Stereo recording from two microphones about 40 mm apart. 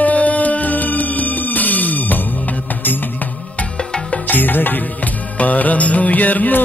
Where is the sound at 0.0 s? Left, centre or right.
Left.